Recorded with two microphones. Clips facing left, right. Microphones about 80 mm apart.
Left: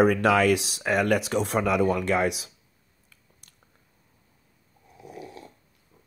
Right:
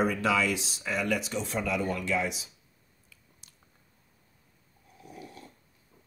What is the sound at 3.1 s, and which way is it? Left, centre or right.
Biting, left.